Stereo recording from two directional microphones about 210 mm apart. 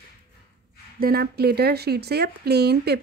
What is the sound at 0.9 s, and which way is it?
Speech, 45° right (ahead or behind).